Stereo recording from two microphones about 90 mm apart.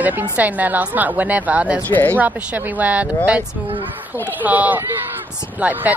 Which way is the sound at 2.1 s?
20° right (ahead or behind).